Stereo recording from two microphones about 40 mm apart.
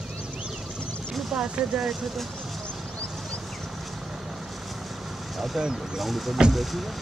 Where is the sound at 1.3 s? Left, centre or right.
Right.